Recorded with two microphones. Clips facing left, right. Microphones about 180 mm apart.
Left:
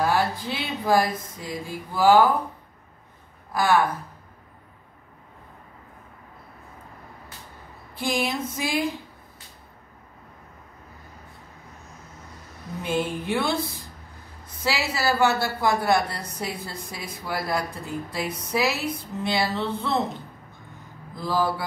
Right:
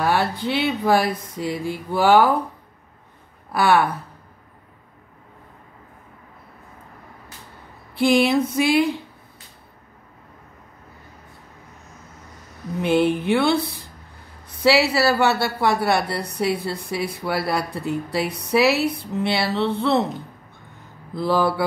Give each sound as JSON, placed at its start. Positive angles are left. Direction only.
{"t": 0.0, "sound": "a woman's voice", "side_deg": -70}
{"t": 3.5, "sound": "a woman's voice", "side_deg": -70}
{"t": 7.9, "sound": "a woman's voice", "side_deg": -70}
{"t": 12.8, "sound": "a woman's voice", "side_deg": -70}
{"t": 14.6, "sound": "a woman's voice", "side_deg": -70}
{"t": 21.1, "sound": "a woman's voice", "side_deg": -65}